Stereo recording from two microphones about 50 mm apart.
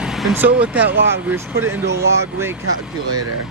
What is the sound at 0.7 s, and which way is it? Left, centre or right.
Speech, right.